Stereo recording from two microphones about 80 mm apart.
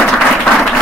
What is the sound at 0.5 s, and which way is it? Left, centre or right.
Applause, centre.